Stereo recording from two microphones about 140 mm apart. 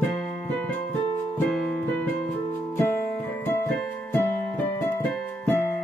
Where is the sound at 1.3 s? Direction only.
10° left (ahead or behind).